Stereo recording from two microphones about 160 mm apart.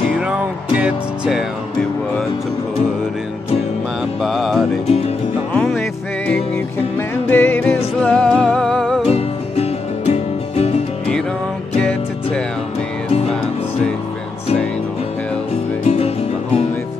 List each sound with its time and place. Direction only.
0.3 s music: 5° right (ahead or behind)
4.2 s music: centre (ahead or behind)
9.1 s music: 40° left (ahead or behind)